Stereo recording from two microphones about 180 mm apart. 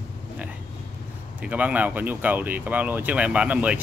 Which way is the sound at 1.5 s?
10° right (ahead or behind).